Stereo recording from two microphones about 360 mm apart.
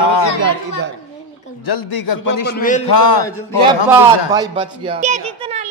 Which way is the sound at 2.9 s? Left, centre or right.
Left.